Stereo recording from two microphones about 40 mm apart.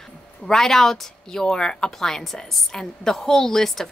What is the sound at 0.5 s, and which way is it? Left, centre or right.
A woman's voice, centre.